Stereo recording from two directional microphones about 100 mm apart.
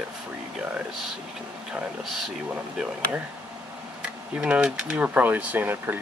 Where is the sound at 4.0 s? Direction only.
10° right (ahead or behind).